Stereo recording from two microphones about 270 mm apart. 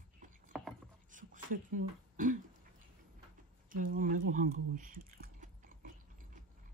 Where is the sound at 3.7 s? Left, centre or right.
Right.